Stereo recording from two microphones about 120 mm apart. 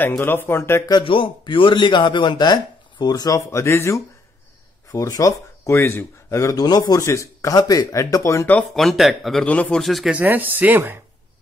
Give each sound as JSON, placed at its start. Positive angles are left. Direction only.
{"t": 0.2, "sound": "speech", "side_deg": 20}
{"t": 1.0, "sound": "a man's voice", "side_deg": 45}
{"t": 8.5, "sound": "speech", "side_deg": 0}
{"t": 10.1, "sound": "speech", "side_deg": -15}